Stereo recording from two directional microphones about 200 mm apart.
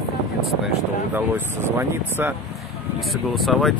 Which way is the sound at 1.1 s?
10° right (ahead or behind).